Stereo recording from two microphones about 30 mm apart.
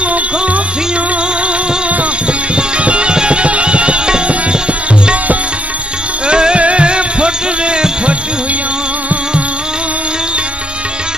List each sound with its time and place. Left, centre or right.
2.5 s music: right
6.2 s music: right